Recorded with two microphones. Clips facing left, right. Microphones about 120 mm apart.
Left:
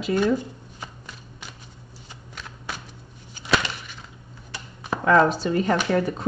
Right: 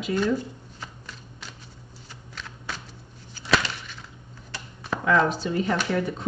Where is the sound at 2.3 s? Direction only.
15° left (ahead or behind).